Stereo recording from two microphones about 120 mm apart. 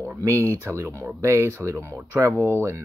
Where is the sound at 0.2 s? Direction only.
25° right (ahead or behind).